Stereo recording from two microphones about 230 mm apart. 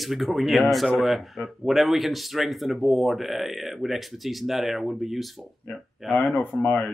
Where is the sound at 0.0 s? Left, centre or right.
Centre.